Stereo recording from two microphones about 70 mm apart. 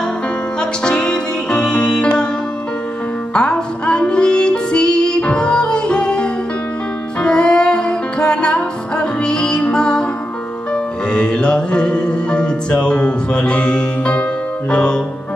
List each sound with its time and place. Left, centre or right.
0.6 s music: centre
3.3 s music: centre